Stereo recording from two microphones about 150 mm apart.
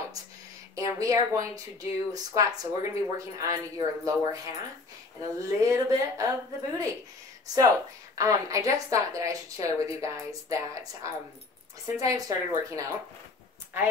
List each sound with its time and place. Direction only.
0.7 s speech: 20° right (ahead or behind)
8.2 s speech: 20° right (ahead or behind)